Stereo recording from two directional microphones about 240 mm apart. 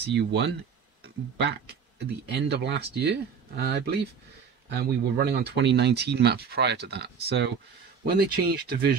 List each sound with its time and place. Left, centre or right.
0.0 s speech: right